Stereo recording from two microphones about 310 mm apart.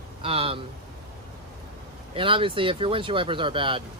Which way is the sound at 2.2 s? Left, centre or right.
Centre.